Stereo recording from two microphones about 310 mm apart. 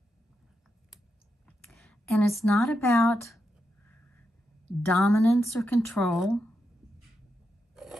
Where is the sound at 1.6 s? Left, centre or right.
Centre.